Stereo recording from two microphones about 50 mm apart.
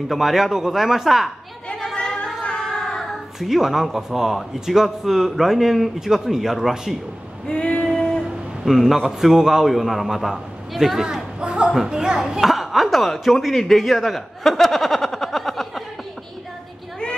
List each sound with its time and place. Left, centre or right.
0.1 s speech: centre
2.2 s child singing: centre
3.3 s speech: centre
7.4 s female singing: left
8.6 s speech: centre; by 11.7 s right
11.7 s speech: centre